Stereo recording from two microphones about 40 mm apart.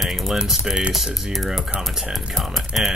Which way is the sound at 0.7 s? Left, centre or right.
Centre.